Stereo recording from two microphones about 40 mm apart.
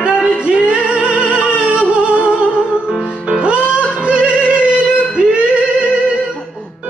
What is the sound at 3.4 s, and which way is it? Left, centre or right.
Music, right.